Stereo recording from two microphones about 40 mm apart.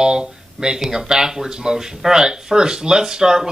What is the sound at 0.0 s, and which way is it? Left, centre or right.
Speech, centre.